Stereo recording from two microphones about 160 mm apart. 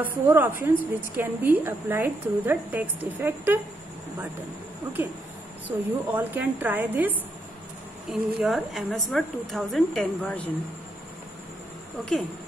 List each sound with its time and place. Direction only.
0.0 s a woman's voice: 10° right (ahead or behind)
5.7 s a woman's voice: 10° right (ahead or behind)
12.0 s a woman's voice: centre (ahead or behind)